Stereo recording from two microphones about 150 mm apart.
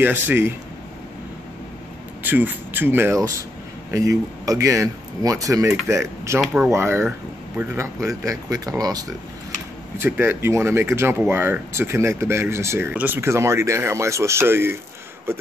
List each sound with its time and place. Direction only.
0.0 s speech: 15° right (ahead or behind)
2.2 s speech: 10° right (ahead or behind)